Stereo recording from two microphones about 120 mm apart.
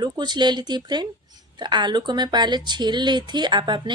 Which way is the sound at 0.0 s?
35° right (ahead or behind).